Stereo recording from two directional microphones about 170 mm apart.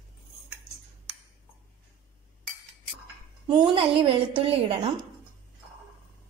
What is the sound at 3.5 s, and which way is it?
A woman's voice, 30° right (ahead or behind).